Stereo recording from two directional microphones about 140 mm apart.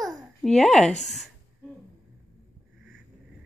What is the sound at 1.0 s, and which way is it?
Speech, centre (ahead or behind).